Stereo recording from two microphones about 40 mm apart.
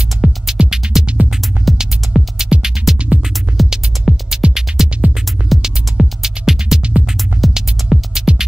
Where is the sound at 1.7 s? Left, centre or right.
Centre.